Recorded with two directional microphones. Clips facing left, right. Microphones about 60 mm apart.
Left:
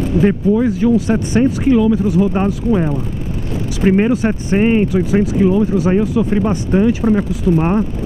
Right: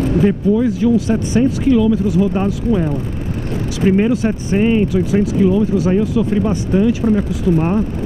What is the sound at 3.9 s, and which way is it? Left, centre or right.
Speech, left.